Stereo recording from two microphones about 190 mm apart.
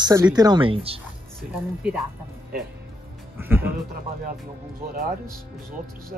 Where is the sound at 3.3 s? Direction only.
10° right (ahead or behind).